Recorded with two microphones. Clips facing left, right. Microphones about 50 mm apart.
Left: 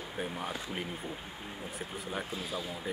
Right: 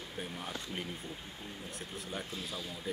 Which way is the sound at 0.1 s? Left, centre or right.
Centre.